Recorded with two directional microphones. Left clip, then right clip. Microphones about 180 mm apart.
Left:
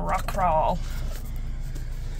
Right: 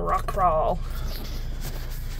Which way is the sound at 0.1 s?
Centre (ahead or behind).